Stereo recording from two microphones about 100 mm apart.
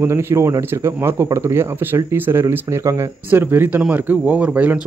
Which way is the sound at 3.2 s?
20° right (ahead or behind).